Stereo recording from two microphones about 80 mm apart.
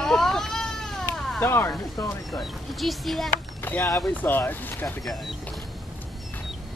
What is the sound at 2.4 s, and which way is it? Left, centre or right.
Speech, centre.